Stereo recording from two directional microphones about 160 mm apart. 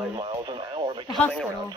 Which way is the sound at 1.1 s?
5° left (ahead or behind).